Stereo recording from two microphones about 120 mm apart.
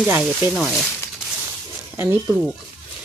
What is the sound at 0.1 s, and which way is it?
Speech, 15° right (ahead or behind).